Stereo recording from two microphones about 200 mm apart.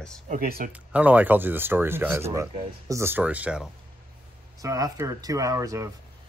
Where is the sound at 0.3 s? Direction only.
45° right (ahead or behind).